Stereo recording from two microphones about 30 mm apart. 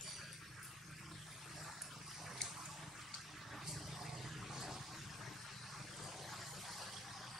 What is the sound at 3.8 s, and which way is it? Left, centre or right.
Vehicle, centre.